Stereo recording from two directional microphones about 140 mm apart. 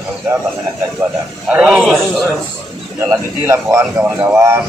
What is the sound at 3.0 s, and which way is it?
A man's voice, 20° right (ahead or behind).